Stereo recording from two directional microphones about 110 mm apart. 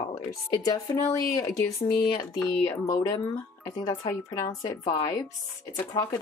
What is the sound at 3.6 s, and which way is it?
Speech, 30° left (ahead or behind).